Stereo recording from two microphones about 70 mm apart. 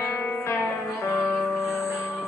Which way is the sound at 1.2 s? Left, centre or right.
Centre.